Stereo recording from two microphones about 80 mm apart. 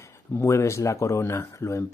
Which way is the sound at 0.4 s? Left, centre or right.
Left.